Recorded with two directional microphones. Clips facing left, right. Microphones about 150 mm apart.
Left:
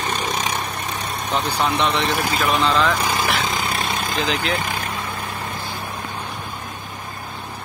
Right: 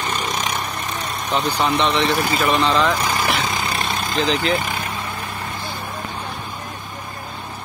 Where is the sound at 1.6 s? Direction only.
5° left (ahead or behind).